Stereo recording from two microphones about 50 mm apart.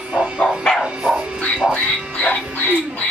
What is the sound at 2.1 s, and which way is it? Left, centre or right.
Music, left.